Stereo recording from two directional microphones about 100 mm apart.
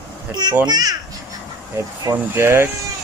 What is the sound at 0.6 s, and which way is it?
Speech, 40° right (ahead or behind).